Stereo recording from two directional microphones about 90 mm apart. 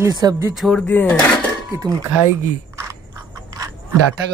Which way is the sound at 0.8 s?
20° left (ahead or behind).